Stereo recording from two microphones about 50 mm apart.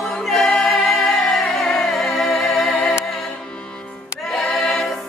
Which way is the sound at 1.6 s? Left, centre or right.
Centre.